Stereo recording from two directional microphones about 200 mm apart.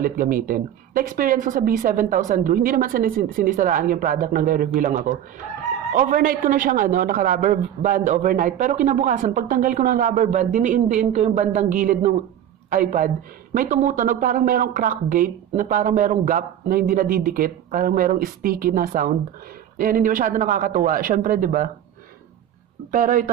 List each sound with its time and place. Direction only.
0.0 s a man's voice: 45° right (ahead or behind)
22.8 s a man's voice: 40° right (ahead or behind)